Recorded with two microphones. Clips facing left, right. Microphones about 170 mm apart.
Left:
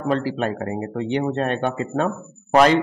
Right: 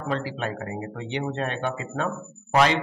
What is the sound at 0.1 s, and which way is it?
A man's voice, 45° left (ahead or behind).